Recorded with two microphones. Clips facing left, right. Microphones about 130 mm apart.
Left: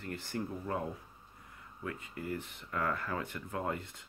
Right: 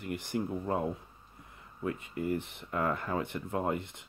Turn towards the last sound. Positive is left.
turn(degrees=-20)  # may be behind; listen again after turning